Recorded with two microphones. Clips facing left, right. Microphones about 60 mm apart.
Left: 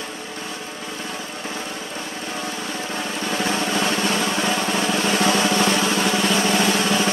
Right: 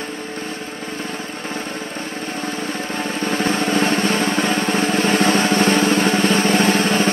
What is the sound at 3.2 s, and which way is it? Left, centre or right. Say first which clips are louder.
Drum: right 3 dB; right.